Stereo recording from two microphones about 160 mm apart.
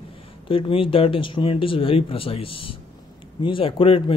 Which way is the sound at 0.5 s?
35° left (ahead or behind).